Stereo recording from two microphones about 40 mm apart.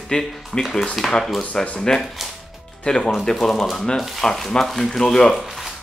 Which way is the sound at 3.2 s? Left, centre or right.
Centre.